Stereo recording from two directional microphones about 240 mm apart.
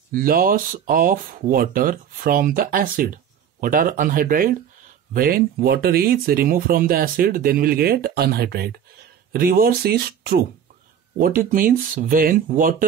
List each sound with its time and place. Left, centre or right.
0.1 s speech: right